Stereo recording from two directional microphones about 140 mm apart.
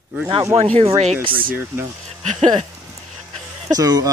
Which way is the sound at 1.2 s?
90° right.